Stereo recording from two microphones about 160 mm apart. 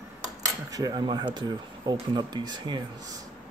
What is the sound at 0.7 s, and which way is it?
Speech, 25° right (ahead or behind).